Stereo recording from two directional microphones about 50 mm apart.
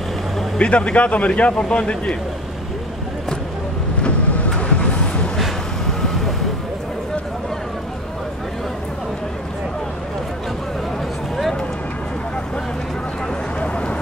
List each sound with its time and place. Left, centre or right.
0.6 s speech: left
4.6 s vehicle: left
13.6 s a sound: left